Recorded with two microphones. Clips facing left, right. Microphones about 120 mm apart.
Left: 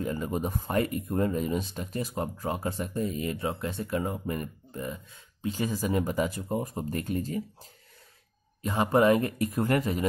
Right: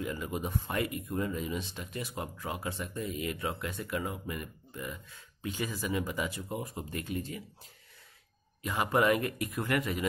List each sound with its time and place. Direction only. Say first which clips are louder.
0.0 s speech: left 5 dB; 35° left (ahead or behind)
8.6 s speech: left 5 dB; 30° left (ahead or behind)